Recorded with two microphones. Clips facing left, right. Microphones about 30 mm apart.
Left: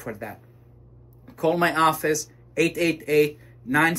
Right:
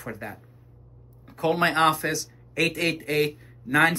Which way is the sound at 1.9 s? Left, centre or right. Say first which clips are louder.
Left 2 dB; right.